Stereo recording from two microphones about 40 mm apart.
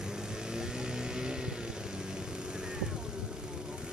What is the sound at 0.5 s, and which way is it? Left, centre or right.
Vehicle, centre.